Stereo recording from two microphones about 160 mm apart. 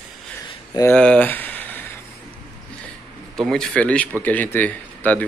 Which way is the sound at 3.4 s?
5° left (ahead or behind).